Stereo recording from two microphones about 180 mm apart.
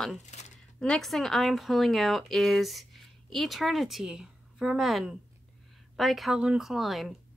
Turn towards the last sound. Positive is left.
turn(degrees=0)  # may be behind; listen again after turning